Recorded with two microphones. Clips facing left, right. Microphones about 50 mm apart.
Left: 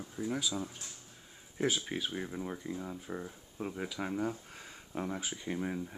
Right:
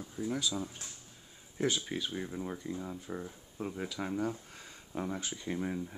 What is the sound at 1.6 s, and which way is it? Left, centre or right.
Speech, centre.